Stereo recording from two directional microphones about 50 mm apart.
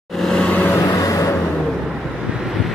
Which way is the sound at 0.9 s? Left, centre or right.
Left.